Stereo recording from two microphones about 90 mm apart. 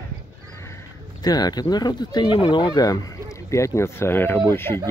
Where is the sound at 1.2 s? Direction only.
45° left (ahead or behind); by 4.8 s 25° left (ahead or behind).